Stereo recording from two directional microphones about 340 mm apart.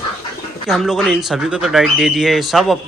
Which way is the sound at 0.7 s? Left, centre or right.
Centre.